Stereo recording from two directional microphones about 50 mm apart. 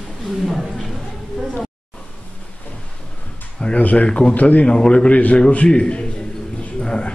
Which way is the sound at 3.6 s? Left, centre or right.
Left.